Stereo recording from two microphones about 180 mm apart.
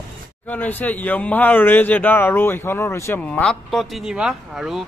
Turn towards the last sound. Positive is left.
turn(degrees=-5)  # may be behind; listen again after turning